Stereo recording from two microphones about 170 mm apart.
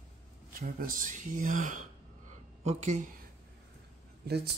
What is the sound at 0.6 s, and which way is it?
Speech, 55° right (ahead or behind).